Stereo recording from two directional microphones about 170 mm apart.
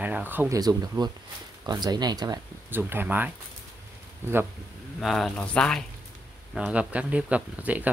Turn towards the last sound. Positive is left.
turn(degrees=-10)  # may be behind; listen again after turning